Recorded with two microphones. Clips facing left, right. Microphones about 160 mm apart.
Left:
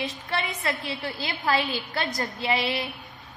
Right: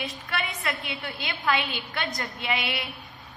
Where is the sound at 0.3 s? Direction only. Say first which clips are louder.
Left 2 dB; 25° left (ahead or behind).